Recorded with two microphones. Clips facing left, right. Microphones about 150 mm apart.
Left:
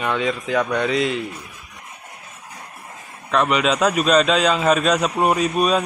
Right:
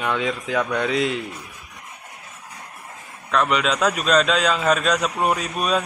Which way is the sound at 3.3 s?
5° left (ahead or behind).